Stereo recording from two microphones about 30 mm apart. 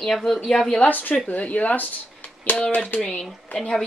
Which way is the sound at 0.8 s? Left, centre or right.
Left.